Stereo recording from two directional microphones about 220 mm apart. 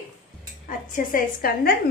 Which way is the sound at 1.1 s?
40° left (ahead or behind).